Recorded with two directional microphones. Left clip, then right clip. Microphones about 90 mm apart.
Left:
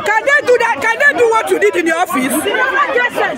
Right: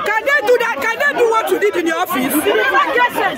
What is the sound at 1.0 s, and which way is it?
Chatter, 45° left (ahead or behind).